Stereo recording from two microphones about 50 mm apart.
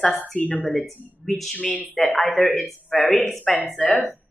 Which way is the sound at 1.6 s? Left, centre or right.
Left.